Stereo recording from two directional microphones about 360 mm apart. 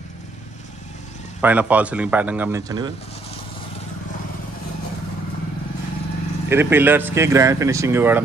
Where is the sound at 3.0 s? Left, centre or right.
Centre.